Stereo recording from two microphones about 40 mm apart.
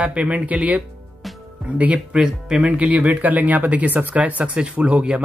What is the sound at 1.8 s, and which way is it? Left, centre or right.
Speech, right.